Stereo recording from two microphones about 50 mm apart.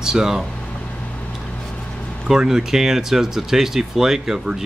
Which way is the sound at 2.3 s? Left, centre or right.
Centre.